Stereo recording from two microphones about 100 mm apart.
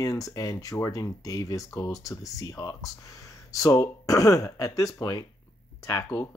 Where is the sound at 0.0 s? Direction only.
35° left (ahead or behind).